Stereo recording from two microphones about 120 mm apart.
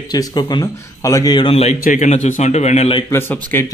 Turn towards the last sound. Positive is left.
turn(degrees=20)  # may be behind; listen again after turning